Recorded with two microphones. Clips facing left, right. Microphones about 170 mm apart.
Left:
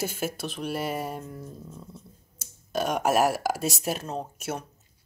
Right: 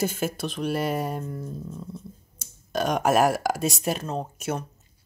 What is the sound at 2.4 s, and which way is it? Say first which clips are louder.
Speech: right 2 dB; 5° left (ahead or behind).